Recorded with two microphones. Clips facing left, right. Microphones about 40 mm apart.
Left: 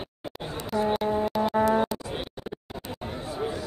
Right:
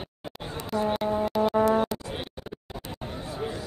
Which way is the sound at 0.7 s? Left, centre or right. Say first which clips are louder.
Left 1 dB; centre.